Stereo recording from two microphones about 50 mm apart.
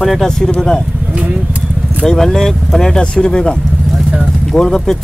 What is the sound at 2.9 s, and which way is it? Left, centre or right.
Speech, centre.